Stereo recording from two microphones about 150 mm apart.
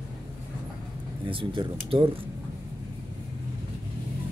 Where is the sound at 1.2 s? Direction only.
35° right (ahead or behind).